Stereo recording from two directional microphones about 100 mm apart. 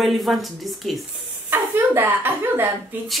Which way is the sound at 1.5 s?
20° right (ahead or behind).